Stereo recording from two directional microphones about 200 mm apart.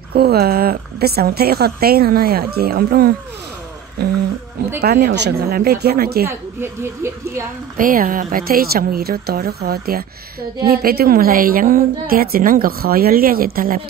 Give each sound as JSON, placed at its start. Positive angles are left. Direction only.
{"t": 0.1, "sound": "a woman's voice", "side_deg": -50}
{"t": 4.8, "sound": "a woman's voice", "side_deg": -50}
{"t": 6.2, "sound": "a woman's voice", "side_deg": -10}
{"t": 7.7, "sound": "a woman's voice", "side_deg": -45}